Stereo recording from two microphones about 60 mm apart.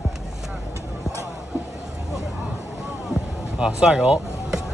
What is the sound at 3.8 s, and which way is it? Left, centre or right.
Speech, centre.